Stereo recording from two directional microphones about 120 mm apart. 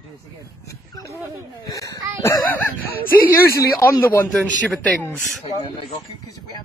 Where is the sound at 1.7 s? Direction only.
30° left (ahead or behind).